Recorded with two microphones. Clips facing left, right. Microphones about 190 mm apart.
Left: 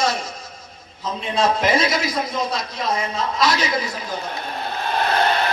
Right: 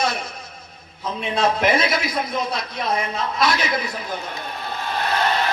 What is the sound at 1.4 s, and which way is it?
A man's voice, 60° right (ahead or behind).